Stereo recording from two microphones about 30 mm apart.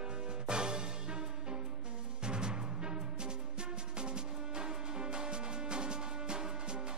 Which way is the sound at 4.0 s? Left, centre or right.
Right.